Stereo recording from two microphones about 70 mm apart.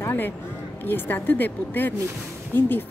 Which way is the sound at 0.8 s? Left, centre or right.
Left.